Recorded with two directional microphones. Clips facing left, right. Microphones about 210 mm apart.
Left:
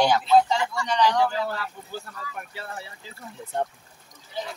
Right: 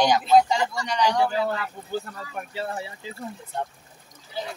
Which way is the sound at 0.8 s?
15° right (ahead or behind).